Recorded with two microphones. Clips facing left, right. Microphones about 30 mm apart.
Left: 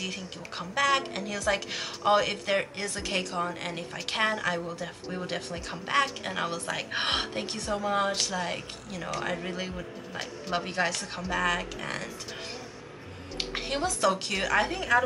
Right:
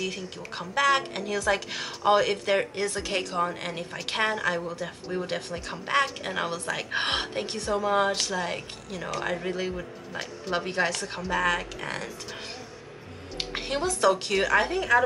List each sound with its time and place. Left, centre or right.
0.0 s speech: centre
13.4 s a woman's voice: centre